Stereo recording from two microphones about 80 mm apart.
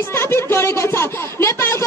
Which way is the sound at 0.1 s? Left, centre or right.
Left.